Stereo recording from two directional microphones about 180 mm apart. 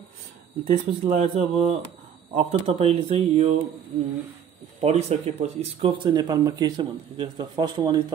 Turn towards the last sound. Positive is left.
turn(degrees=-25)  # may be behind; listen again after turning